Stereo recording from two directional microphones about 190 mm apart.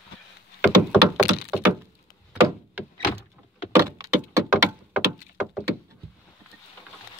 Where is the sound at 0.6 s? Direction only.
5° right (ahead or behind).